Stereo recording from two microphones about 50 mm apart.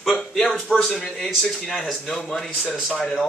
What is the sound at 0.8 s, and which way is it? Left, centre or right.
A man's voice, centre.